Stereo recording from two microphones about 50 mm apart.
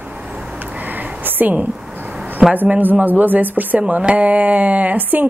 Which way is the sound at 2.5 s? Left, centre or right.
Right.